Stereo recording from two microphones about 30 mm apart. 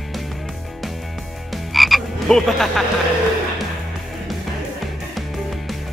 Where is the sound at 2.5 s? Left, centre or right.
Centre.